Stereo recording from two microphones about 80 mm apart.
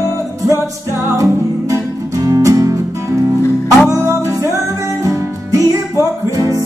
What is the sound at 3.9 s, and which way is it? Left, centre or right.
Music, right.